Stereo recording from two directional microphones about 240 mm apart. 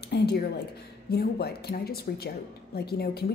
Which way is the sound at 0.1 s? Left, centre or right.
Left.